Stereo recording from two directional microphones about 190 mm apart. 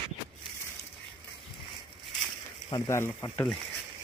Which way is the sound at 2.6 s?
15° left (ahead or behind).